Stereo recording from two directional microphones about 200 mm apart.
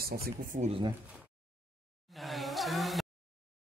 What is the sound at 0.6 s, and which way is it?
Speech, 25° right (ahead or behind).